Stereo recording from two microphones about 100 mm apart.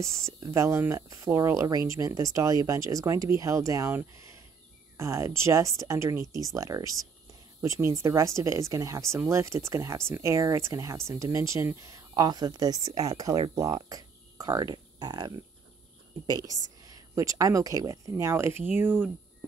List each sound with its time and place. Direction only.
0.0 s speech: 30° right (ahead or behind)
4.9 s speech: 30° right (ahead or behind)